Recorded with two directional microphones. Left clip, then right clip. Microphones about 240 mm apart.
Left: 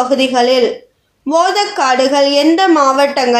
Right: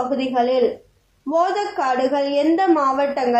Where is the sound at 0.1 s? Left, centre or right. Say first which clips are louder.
Left 7 dB; left.